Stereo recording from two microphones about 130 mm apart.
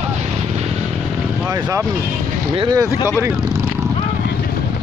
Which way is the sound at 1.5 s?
25° right (ahead or behind).